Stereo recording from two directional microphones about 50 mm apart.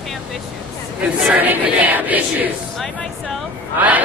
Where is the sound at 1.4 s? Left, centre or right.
Right.